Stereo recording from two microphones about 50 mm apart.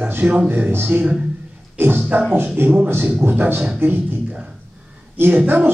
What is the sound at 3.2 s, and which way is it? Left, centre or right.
Speech, right.